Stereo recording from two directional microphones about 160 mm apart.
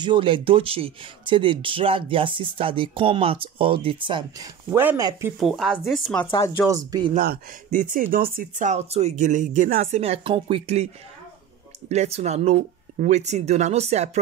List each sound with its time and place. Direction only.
0.0 s speech: 30° right (ahead or behind)
4.6 s speech: 15° right (ahead or behind)
5.4 s speech: centre (ahead or behind)
6.7 s speech: 25° right (ahead or behind)
7.2 s speech: 60° right (ahead or behind); by 10.9 s 40° right (ahead or behind)
11.9 s speech: 45° right (ahead or behind)